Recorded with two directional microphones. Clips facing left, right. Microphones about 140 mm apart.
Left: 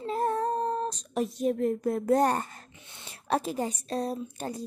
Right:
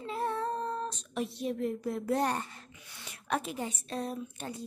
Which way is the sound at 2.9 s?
25° left (ahead or behind).